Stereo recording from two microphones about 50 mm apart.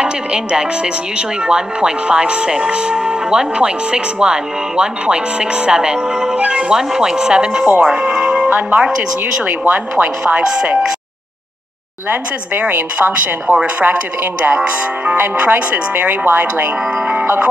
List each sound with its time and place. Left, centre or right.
0.0 s speech: right
7.9 s music: centre
8.5 s speech: right
12.1 s speech: right
13.1 s speech: right
15.1 s speech: right